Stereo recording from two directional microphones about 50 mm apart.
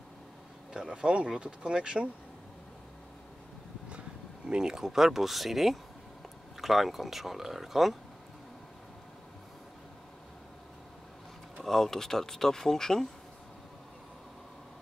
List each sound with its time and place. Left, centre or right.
0.7 s speech: centre
4.5 s speech: centre
11.6 s speech: centre